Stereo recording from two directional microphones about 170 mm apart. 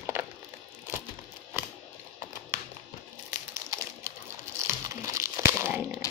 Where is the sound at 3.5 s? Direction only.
20° right (ahead or behind).